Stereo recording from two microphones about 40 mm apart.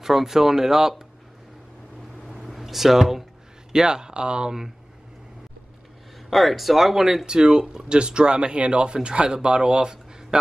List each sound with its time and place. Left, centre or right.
0.0 s speech: centre
2.4 s a sound: centre
3.7 s speech: centre
6.3 s speech: centre